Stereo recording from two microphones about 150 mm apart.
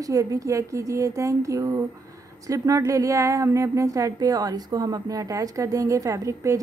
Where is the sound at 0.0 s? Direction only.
25° right (ahead or behind).